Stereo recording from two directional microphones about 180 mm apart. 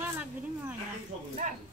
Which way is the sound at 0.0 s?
10° right (ahead or behind).